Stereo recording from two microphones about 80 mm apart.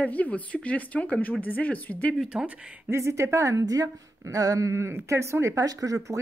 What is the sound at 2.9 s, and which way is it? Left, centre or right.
Speech, right.